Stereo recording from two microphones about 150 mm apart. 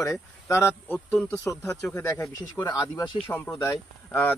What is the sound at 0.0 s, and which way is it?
Speech, 20° left (ahead or behind).